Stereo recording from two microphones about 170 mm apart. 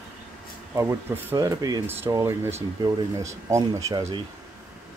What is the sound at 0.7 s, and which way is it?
Speech, 15° right (ahead or behind).